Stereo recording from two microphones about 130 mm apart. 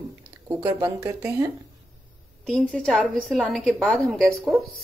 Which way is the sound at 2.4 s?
5° left (ahead or behind).